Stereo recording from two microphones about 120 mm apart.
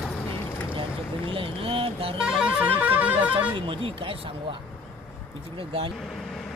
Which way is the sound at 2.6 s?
10° right (ahead or behind).